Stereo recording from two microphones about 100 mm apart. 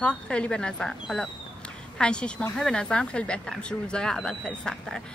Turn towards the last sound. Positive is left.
turn(degrees=10)  # may be behind; listen again after turning